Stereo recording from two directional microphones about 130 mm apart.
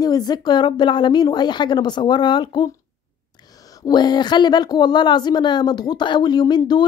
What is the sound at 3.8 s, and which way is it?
Speech, 35° left (ahead or behind).